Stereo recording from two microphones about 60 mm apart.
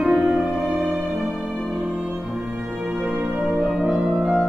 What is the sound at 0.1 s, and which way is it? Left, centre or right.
Music, centre.